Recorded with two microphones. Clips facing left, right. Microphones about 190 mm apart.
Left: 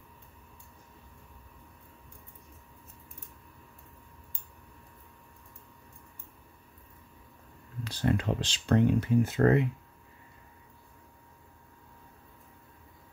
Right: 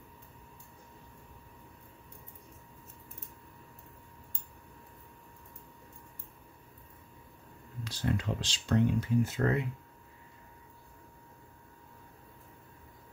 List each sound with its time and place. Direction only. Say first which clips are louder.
7.8 s speech: left 4 dB; 60° left (ahead or behind)